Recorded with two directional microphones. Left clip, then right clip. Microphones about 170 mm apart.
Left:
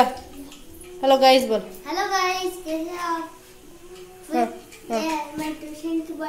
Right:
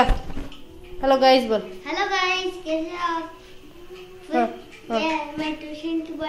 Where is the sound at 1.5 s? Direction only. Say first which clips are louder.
Even; 20° left (ahead or behind).